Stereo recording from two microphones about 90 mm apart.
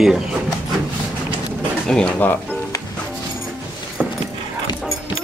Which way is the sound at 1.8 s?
10° left (ahead or behind).